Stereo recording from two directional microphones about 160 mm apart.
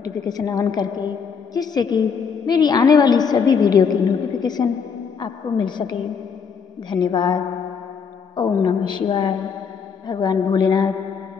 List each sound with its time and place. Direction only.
0.0 s a woman's voice: 25° left (ahead or behind)